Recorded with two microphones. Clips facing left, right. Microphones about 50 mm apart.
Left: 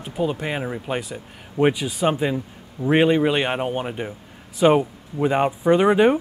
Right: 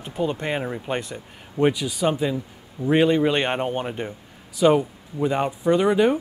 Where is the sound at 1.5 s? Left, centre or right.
Left.